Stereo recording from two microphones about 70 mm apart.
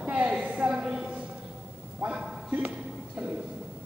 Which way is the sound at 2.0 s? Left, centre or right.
Right.